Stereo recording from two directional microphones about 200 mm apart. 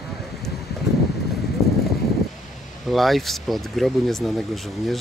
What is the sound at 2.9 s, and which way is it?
Speech, centre (ahead or behind).